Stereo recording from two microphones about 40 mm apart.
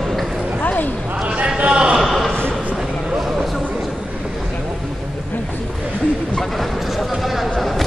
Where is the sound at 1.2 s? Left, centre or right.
Right.